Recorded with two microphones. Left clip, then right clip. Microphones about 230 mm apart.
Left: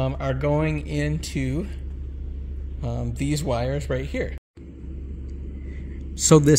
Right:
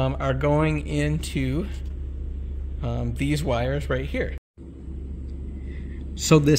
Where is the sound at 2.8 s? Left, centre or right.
Centre.